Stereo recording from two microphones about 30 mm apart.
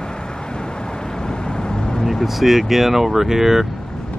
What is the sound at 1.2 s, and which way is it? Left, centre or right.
Vehicle, left.